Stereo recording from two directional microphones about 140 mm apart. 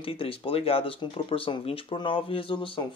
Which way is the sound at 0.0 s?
40° left (ahead or behind).